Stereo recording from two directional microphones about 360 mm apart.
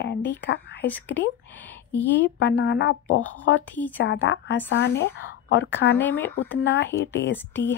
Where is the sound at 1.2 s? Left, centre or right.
Centre.